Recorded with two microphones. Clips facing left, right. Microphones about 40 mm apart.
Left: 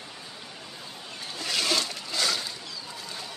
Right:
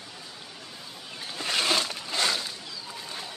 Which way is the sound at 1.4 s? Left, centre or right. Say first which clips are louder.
Right 1 dB; right.